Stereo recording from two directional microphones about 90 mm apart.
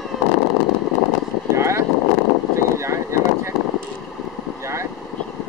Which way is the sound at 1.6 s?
30° right (ahead or behind).